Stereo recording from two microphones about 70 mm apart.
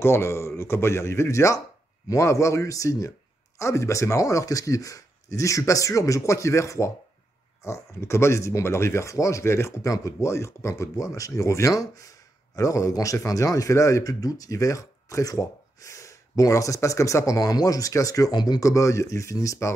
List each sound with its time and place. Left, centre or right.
0.0 s speech: left
18.6 s speech: left